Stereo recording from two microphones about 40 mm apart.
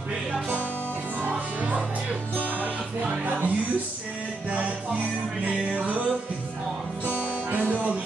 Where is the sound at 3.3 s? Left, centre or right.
Right.